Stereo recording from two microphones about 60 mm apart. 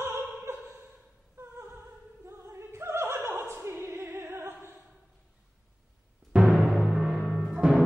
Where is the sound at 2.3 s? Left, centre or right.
Right.